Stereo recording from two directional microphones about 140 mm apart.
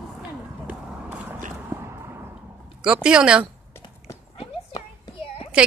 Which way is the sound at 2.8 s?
5° right (ahead or behind).